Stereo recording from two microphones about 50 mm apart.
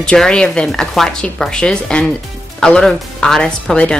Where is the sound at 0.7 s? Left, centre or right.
Centre.